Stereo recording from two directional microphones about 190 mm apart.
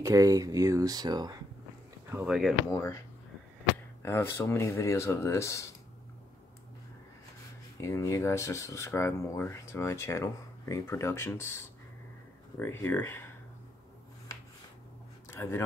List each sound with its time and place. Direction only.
0.0 s speech: 15° right (ahead or behind)
2.0 s speech: 5° right (ahead or behind)
2.7 s speech: 15° left (ahead or behind)
4.0 s speech: 15° left (ahead or behind)
7.8 s speech: 15° left (ahead or behind)
15.2 s a sound: 15° left (ahead or behind)